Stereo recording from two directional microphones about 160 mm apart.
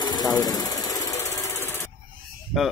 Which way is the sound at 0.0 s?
25° left (ahead or behind).